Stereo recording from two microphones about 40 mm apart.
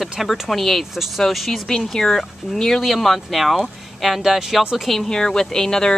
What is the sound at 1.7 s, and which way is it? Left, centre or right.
Speech, centre.